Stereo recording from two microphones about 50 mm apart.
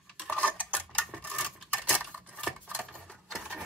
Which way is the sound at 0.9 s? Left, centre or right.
Left.